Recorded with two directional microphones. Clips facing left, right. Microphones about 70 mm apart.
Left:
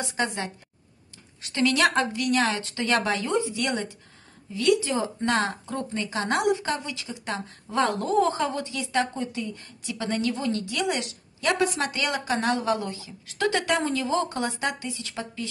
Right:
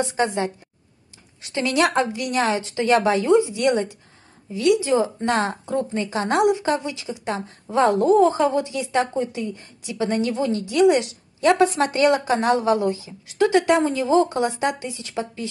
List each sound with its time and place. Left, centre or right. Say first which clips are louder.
0.1 s a woman's voice: right 6 dB; right
1.5 s a woman's voice: right 2 dB; centre